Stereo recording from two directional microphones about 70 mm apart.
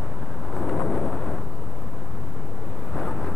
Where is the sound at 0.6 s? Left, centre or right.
Centre.